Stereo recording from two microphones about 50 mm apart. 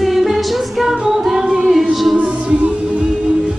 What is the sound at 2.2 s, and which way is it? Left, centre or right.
Music, right.